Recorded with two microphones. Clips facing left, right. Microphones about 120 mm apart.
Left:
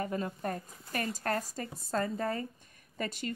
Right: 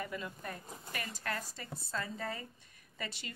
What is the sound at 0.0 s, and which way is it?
Speech, 40° left (ahead or behind).